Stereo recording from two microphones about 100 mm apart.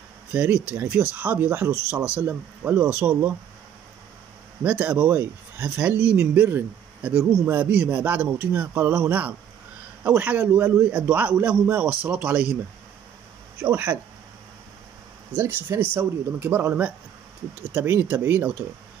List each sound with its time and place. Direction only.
0.3 s speech: 15° right (ahead or behind)
2.0 s speech: 15° right (ahead or behind)
4.6 s speech: 15° right (ahead or behind)
13.6 s speech: 20° right (ahead or behind)
15.3 s speech: 25° right (ahead or behind)